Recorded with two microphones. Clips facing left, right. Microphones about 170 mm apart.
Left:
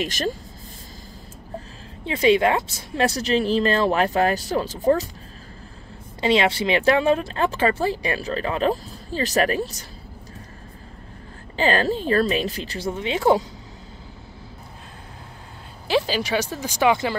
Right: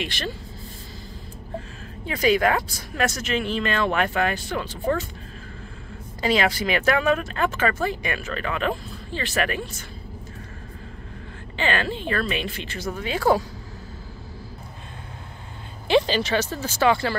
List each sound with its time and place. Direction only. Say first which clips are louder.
0.0 s speech: left 5 dB; 45° left (ahead or behind)
2.0 s speech: left 3 dB; 25° left (ahead or behind)
6.2 s speech: left 2 dB; 25° left (ahead or behind)
11.5 s speech: left 5 dB; 40° left (ahead or behind); by 13.5 s 20° left (ahead or behind)
15.9 s speech: right 2 dB; 5° left (ahead or behind)